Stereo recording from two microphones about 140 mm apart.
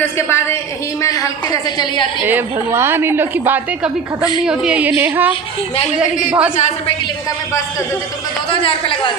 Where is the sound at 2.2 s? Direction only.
15° right (ahead or behind).